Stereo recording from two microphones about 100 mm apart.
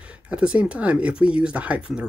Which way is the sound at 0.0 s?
10° right (ahead or behind).